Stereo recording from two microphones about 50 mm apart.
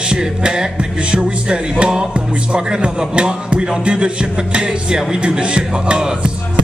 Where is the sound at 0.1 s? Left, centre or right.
Centre.